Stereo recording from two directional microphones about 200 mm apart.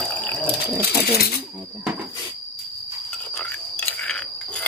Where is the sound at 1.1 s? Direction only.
50° left (ahead or behind).